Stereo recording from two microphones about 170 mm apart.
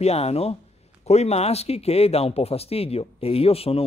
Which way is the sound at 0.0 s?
40° left (ahead or behind).